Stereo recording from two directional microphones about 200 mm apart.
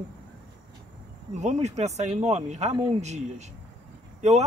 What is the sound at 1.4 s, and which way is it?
Speech, 35° right (ahead or behind).